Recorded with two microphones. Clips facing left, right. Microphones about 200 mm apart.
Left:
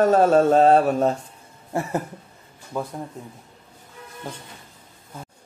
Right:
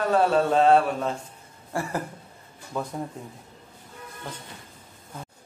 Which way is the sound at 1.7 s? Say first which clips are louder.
Left 4 dB; 20° left (ahead or behind).